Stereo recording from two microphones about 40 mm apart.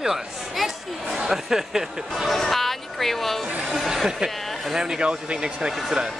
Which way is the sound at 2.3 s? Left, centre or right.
Centre.